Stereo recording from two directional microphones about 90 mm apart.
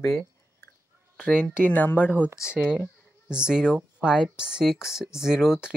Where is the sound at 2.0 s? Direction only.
15° right (ahead or behind).